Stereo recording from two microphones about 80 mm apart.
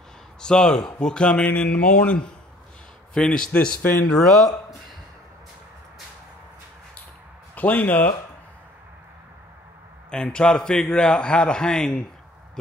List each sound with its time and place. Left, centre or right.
0.4 s a man's voice: centre
4.1 s speech: centre
7.5 s speech: left
10.1 s a man's voice: centre